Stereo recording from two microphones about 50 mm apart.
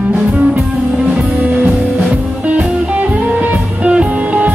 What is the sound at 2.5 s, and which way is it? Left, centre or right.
Music, right.